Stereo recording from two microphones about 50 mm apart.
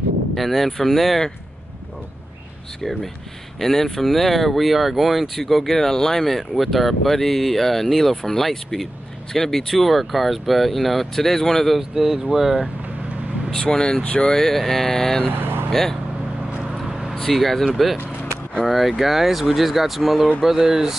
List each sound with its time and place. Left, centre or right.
0.4 s speech: centre
2.8 s speech: centre
11.9 s speech: centre
13.6 s speech: centre
14.4 s speech: centre
17.1 s speech: centre